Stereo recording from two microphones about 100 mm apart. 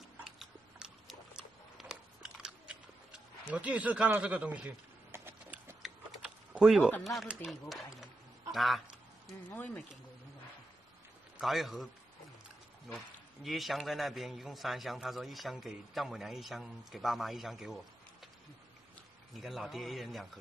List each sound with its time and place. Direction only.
0.2 s dog: 5° right (ahead or behind)
5.1 s a sound: 25° right (ahead or behind)
5.8 s gears: centre (ahead or behind)
6.5 s a man's voice: 5° right (ahead or behind)
7.6 s a sound: centre (ahead or behind)
9.5 s speech: 20° left (ahead or behind)
11.3 s a man's voice: centre (ahead or behind)
13.4 s a man's voice: centre (ahead or behind)
19.3 s a man's voice: centre (ahead or behind)